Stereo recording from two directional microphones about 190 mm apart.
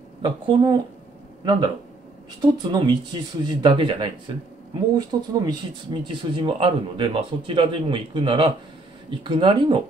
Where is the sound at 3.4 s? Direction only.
25° right (ahead or behind).